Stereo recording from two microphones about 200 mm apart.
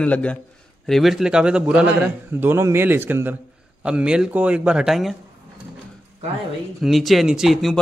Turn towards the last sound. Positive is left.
turn(degrees=0)  # may be behind; listen again after turning